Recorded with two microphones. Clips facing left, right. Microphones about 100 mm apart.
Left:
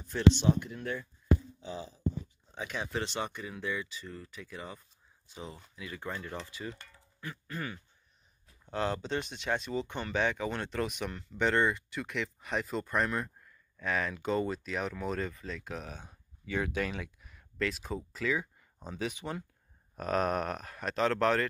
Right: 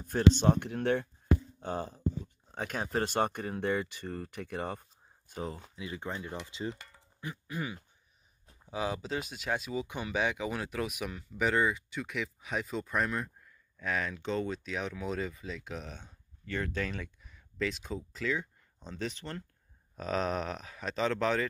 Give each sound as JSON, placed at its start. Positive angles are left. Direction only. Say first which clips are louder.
{"t": 0.0, "sound": "speech", "louder": "right 1 dB", "side_deg": -50}
{"t": 5.3, "sound": "speech", "louder": "right 6 dB", "side_deg": -45}
{"t": 5.8, "sound": "speech", "louder": "even", "side_deg": -20}